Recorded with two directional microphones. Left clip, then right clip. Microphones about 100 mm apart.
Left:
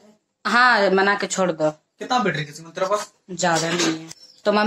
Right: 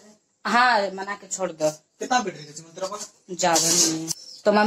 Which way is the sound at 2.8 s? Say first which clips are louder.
Left 9 dB; 30° left (ahead or behind).